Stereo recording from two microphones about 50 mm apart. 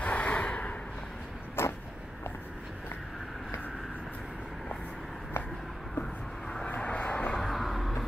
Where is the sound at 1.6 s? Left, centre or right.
Left.